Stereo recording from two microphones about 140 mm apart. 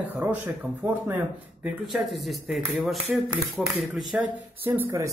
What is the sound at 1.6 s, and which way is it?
Speech, centre (ahead or behind).